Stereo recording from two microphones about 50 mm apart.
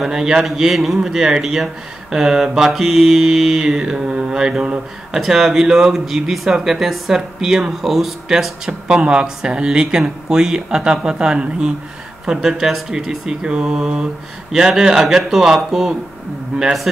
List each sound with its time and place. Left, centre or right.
0.0 s mantra: centre